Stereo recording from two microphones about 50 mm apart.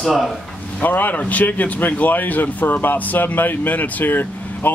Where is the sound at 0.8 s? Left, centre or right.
Left.